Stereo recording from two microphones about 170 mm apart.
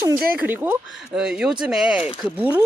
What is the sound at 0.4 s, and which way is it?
Speech, 10° right (ahead or behind).